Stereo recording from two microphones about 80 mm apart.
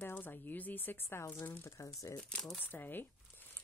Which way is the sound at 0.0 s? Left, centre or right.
Left.